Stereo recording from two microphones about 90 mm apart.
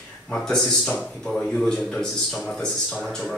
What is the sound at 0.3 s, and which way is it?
Speech, 10° left (ahead or behind).